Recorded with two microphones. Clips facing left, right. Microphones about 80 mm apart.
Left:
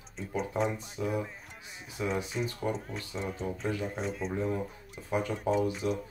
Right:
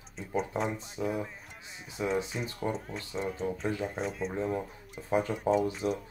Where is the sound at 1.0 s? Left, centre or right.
Centre.